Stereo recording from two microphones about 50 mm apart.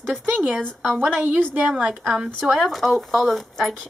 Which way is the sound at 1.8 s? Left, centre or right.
Centre.